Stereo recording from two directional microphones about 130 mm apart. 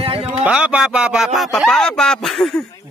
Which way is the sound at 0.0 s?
50° right (ahead or behind).